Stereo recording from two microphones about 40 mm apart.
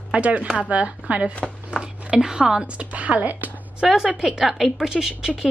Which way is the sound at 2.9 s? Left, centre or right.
Right.